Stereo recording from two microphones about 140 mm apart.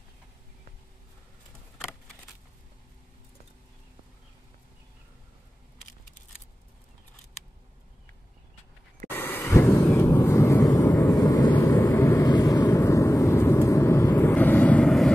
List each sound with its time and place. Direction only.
9.1 s vehicle: 15° left (ahead or behind)